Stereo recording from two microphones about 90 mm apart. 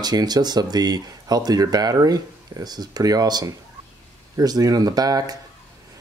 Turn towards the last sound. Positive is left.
turn(degrees=-45)  # may be behind; listen again after turning